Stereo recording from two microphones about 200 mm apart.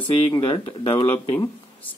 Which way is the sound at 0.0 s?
25° left (ahead or behind).